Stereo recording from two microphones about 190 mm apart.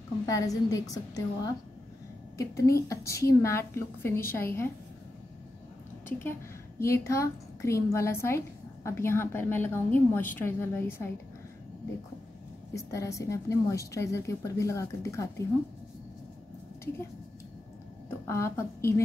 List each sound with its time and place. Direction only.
0.3 s a woman's voice: 15° left (ahead or behind)
6.0 s a woman's voice: 10° left (ahead or behind)
12.7 s a woman's voice: 15° left (ahead or behind)
18.2 s a woman's voice: 15° left (ahead or behind)